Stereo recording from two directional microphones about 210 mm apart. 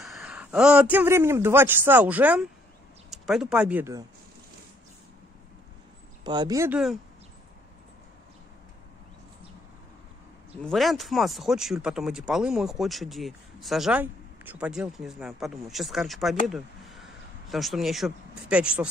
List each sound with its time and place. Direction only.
0.0 s a man's voice: centre (ahead or behind)
6.2 s speech: 20° right (ahead or behind)
10.6 s speech: centre (ahead or behind)